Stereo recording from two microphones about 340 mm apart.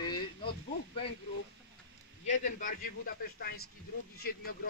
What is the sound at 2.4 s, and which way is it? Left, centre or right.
Speech, left.